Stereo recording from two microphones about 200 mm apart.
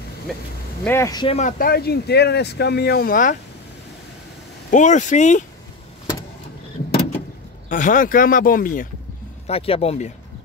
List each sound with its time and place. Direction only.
0.8 s speech: 15° left (ahead or behind)
1.4 s speech: 50° left (ahead or behind)
4.6 s speech: 40° left (ahead or behind)
7.7 s speech: 40° left (ahead or behind)
9.5 s speech: 30° left (ahead or behind)